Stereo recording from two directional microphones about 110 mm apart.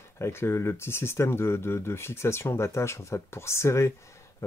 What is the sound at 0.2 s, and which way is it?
Speech, 25° left (ahead or behind).